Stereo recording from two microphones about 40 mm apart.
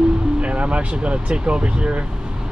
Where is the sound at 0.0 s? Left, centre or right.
Right.